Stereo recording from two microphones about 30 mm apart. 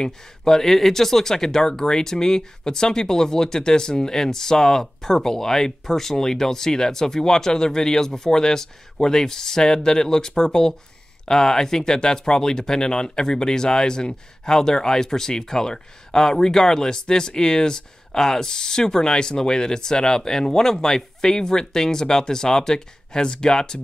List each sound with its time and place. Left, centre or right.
0.0 s speech: centre